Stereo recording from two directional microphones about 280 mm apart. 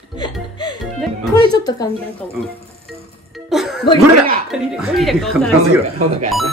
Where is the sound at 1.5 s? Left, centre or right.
Centre.